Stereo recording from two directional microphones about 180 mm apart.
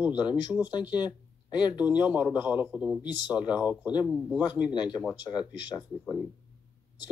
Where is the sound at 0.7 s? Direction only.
25° left (ahead or behind).